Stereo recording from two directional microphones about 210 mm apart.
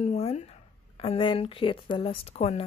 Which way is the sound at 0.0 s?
30° left (ahead or behind).